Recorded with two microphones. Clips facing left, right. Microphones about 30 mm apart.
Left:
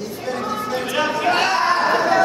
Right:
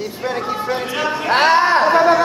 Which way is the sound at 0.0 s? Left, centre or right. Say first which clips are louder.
Right 3 dB; right.